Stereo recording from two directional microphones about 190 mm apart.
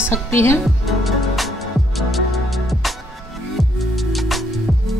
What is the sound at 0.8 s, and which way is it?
Music, centre (ahead or behind).